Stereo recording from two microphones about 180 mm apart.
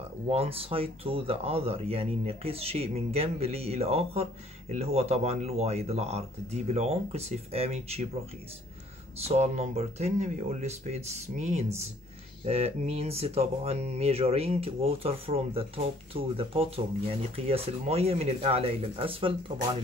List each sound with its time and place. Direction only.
0.3 s speech: 35° right (ahead or behind)
9.2 s speech: 40° right (ahead or behind)